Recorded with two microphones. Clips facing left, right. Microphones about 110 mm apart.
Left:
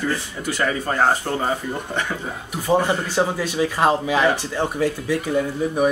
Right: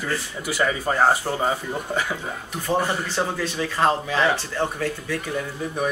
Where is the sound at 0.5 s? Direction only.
10° right (ahead or behind).